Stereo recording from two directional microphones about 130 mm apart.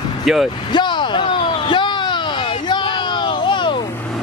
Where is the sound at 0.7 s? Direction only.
35° left (ahead or behind).